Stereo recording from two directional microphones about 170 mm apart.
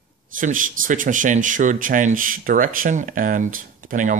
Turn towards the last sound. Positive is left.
turn(degrees=-50)  # may be behind; listen again after turning